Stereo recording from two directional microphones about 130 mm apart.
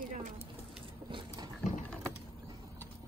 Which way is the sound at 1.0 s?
35° right (ahead or behind).